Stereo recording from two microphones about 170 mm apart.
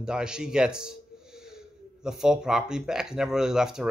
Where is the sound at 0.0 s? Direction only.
5° right (ahead or behind).